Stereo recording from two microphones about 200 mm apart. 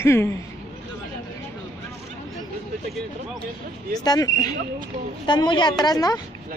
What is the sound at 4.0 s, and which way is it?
A woman's voice, 20° left (ahead or behind).